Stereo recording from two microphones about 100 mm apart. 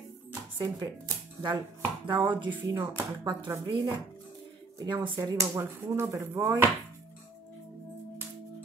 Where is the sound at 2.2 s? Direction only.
50° right (ahead or behind).